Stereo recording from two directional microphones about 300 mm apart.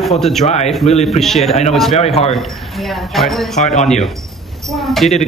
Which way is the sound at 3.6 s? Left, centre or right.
Left.